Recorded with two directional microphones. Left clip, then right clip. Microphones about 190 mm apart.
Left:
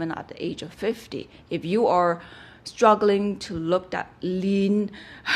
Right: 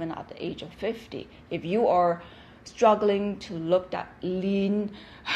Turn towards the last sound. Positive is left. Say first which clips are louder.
# left 5 dB
turn(degrees=35)  # may be behind; listen again after turning